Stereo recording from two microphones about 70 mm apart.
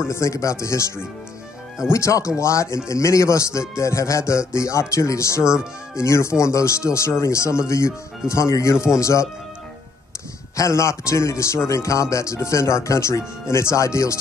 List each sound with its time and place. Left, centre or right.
0.0 s a man's voice: left
10.5 s a man's voice: left